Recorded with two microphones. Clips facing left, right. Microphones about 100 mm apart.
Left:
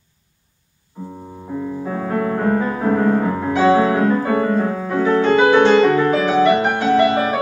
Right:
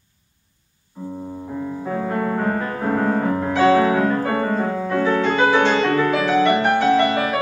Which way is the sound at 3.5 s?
20° left (ahead or behind).